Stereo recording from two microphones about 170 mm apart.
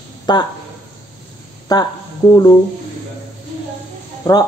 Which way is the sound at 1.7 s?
25° left (ahead or behind).